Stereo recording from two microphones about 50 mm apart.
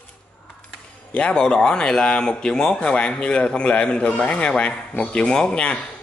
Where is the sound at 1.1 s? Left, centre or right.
Left.